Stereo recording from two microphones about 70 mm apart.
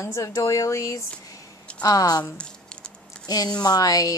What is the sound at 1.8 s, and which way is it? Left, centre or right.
Speech, left.